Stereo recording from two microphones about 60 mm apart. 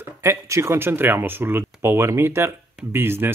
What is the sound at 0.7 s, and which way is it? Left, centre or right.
Speech, right.